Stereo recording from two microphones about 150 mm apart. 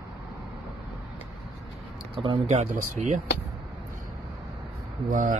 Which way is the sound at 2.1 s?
35° right (ahead or behind).